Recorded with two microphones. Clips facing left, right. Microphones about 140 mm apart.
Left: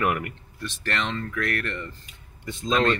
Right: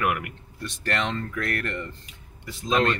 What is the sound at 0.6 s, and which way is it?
Speech, 40° right (ahead or behind).